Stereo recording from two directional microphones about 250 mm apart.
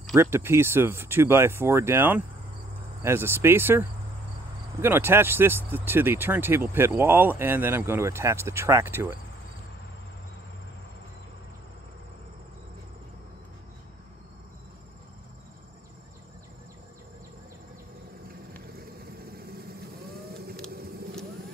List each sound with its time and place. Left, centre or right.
0.1 s speech: centre
4.8 s speech: centre
20.3 s vehicle: right